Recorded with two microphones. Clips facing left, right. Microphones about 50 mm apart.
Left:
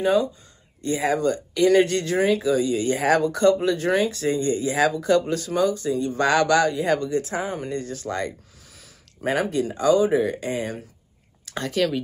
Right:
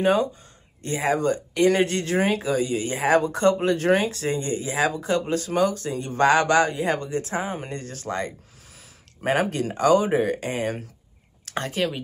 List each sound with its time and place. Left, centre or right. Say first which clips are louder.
0.0 s speech: even; right